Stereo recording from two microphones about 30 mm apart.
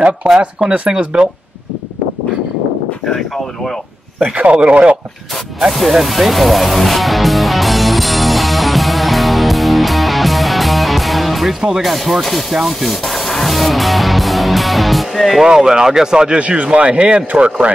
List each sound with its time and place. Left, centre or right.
0.2 s a man's voice: right
0.7 s a man's voice: right
1.1 s speech: right
4.2 s a man's voice: right
5.7 s music: centre
11.8 s speech: centre
15.4 s speech: right
16.3 s speech: right